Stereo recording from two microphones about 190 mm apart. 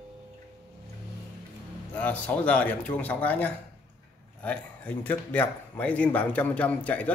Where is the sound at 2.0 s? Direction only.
5° left (ahead or behind).